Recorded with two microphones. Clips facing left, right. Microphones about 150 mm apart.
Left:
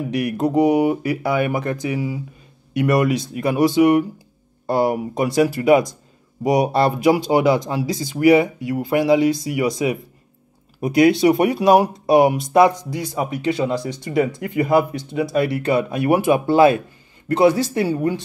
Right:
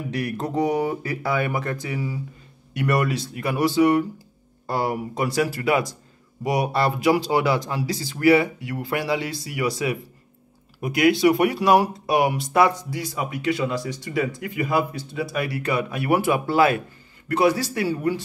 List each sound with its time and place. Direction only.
0.1 s speech: 15° left (ahead or behind)